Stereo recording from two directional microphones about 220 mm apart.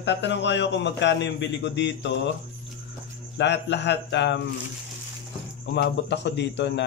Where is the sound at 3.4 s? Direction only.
50° left (ahead or behind).